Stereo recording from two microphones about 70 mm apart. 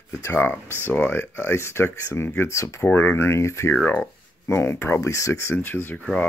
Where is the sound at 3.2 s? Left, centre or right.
Left.